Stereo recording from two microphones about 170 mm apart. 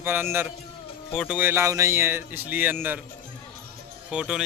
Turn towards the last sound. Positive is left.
turn(degrees=-5)  # may be behind; listen again after turning